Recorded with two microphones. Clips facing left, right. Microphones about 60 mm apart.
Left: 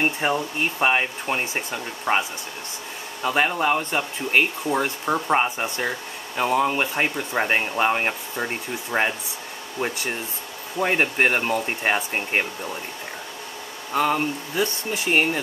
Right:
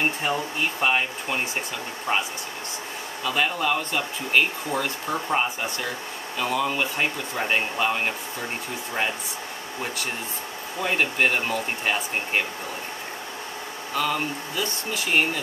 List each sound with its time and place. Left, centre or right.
0.0 s speech: centre; by 9.1 s left
10.8 s speech: left
13.9 s speech: left